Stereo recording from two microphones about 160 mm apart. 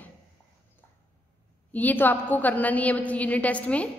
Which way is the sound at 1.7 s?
10° left (ahead or behind).